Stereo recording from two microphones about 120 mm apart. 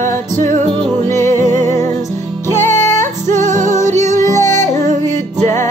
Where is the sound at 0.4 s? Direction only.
90° right.